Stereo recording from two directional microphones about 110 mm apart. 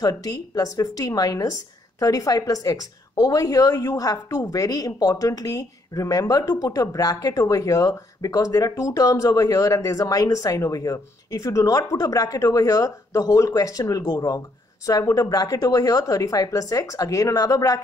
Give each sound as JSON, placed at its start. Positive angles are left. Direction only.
{"t": 0.0, "sound": "a woman's voice", "side_deg": 35}